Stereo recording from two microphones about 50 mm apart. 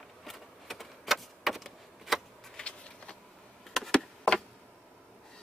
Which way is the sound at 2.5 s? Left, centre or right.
Centre.